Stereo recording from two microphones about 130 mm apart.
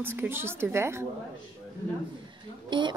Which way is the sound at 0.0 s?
15° right (ahead or behind).